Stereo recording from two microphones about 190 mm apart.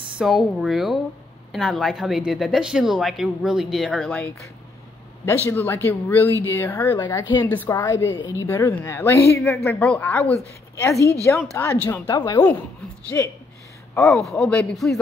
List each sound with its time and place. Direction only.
0.2 s a woman's voice: centre (ahead or behind)
11.5 s speech: 10° left (ahead or behind)
14.0 s speech: centre (ahead or behind)